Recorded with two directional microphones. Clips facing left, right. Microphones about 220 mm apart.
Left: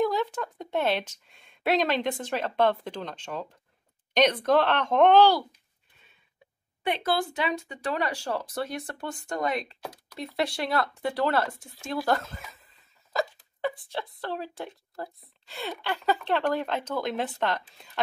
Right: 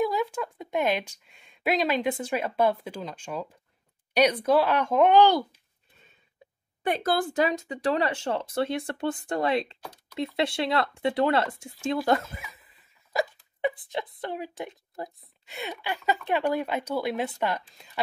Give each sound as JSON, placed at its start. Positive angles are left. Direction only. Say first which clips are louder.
{"t": 0.0, "sound": "speech", "louder": "even", "side_deg": -10}
{"t": 7.0, "sound": "speech", "louder": "right 5 dB", "side_deg": -45}
{"t": 7.6, "sound": "speech", "louder": "right 4 dB", "side_deg": -30}